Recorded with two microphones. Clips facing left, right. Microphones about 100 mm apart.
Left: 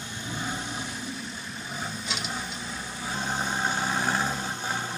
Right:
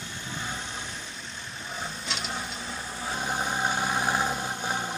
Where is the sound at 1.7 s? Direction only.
Centre (ahead or behind).